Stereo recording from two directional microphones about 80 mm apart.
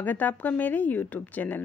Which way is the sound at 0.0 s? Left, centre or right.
Left.